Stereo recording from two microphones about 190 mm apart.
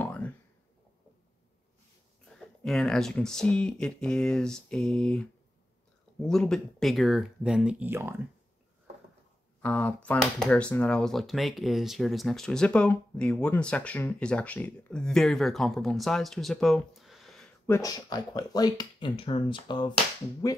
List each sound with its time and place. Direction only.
0.0 s a sound: 10° left (ahead or behind)
2.2 s speech: centre (ahead or behind)
9.6 s speech: 10° left (ahead or behind)
17.6 s speech: 15° left (ahead or behind)